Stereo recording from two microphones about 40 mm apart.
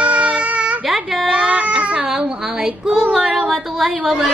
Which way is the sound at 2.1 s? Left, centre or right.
Centre.